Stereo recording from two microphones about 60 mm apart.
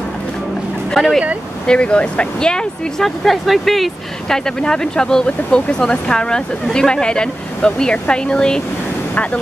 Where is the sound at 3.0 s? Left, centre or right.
Centre.